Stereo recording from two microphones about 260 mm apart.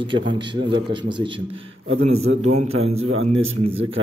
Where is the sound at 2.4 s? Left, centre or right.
Right.